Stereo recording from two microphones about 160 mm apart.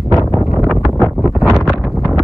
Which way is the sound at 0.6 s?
Centre (ahead or behind).